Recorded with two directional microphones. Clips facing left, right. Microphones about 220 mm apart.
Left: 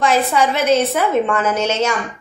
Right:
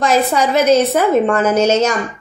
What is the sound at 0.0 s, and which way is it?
A woman's voice, 40° right (ahead or behind).